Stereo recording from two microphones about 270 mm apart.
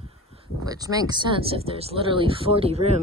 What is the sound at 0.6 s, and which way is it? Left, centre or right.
Speech, centre.